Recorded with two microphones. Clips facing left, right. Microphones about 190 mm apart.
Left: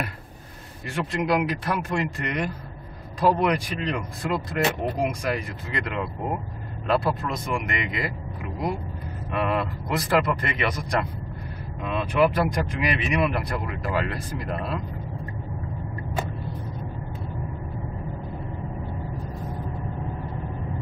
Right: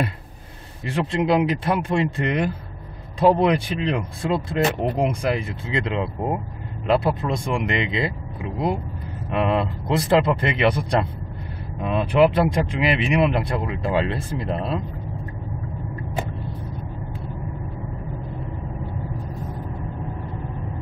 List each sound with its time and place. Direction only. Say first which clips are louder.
0.8 s speech: right 4 dB; 30° right (ahead or behind)